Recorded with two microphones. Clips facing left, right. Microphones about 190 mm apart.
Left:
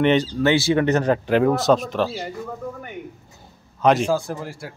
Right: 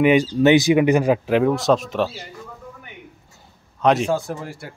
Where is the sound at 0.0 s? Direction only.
10° right (ahead or behind).